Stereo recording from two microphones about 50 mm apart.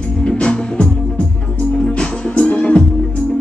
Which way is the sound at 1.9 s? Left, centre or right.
Left.